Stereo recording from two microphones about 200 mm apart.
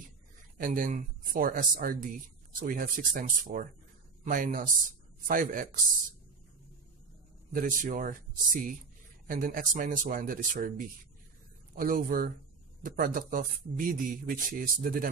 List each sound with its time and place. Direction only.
0.6 s a man's voice: 40° right (ahead or behind)
7.5 s a man's voice: 40° right (ahead or behind)
11.7 s a man's voice: 45° right (ahead or behind)